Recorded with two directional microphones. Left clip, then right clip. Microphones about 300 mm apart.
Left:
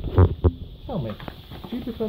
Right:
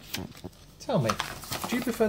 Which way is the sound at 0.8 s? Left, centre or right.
Right.